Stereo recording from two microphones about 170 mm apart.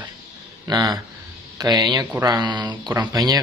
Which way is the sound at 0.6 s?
25° right (ahead or behind).